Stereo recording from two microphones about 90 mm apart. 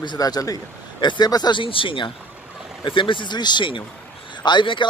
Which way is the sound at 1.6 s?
75° left (ahead or behind).